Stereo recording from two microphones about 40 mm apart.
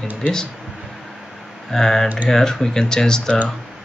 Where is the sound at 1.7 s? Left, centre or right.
Centre.